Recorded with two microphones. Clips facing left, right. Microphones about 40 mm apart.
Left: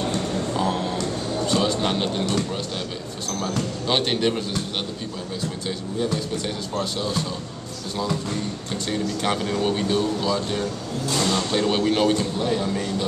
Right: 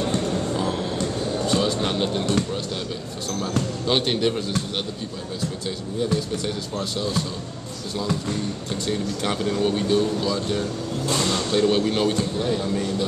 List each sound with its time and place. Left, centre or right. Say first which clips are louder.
0.6 s a sound: left 1 dB; centre
3.3 s speech: right 1 dB; centre
6.3 s speech: even; centre